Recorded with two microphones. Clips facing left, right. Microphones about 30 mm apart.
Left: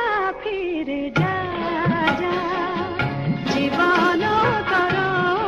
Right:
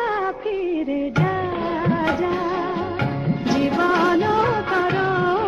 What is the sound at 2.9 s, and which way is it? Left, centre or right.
Music of bollywood, left.